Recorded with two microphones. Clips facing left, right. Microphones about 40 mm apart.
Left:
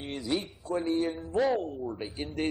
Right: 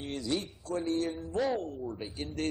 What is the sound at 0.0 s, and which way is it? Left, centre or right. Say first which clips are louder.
A man's voice: left 2 dB; centre.